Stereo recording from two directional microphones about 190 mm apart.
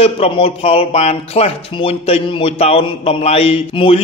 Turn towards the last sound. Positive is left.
turn(degrees=30)  # may be behind; listen again after turning